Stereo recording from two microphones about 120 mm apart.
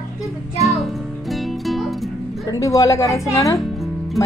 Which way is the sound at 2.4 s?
30° left (ahead or behind).